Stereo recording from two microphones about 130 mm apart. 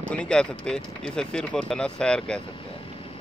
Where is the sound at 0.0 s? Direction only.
5° left (ahead or behind).